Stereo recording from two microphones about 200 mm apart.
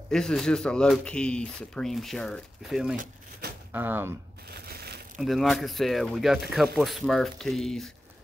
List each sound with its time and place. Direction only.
0.1 s speech: centre (ahead or behind)
3.0 s a sound: 45° right (ahead or behind)
3.7 s speech: 10° right (ahead or behind)
4.5 s crushing: 50° right (ahead or behind)
5.2 s speech: centre (ahead or behind)